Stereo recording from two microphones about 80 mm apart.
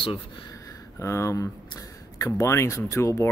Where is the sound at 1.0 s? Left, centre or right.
Left.